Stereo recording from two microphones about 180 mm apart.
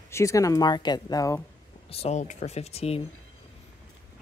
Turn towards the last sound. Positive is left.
turn(degrees=35)  # may be behind; listen again after turning